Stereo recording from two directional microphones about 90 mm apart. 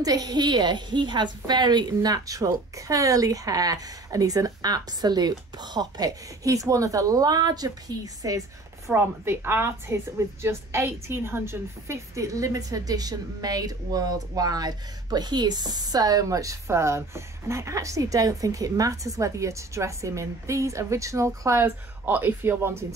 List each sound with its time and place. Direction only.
0.0 s a woman's voice: 45° right (ahead or behind)
8.9 s a woman's voice: 25° right (ahead or behind)